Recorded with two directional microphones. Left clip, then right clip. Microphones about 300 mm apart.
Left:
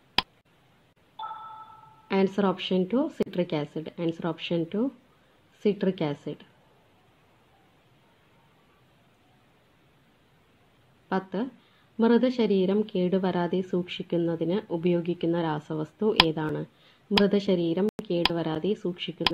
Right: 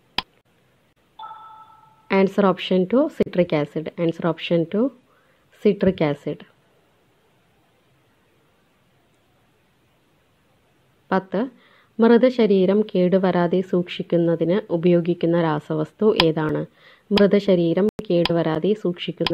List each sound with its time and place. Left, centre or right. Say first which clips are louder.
0.2 s tick: even; centre
1.1 s a sound: even; centre
2.0 s a woman's voice: right 7 dB; right
11.1 s a woman's voice: right 8 dB; right